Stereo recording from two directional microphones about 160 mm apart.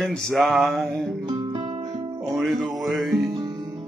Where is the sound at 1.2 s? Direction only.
30° right (ahead or behind).